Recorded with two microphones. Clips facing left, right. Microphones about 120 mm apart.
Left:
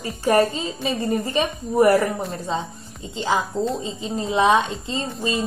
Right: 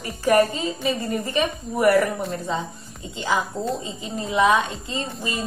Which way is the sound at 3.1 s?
25° left (ahead or behind).